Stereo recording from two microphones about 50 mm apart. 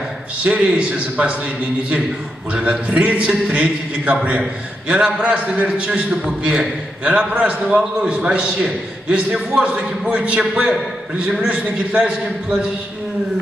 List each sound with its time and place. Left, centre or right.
0.4 s a man's voice: right
2.5 s a man's voice: right